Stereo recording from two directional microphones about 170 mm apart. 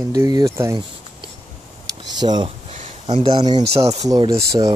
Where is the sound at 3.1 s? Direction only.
25° right (ahead or behind).